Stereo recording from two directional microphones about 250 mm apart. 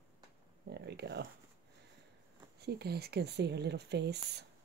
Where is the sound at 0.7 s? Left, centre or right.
Right.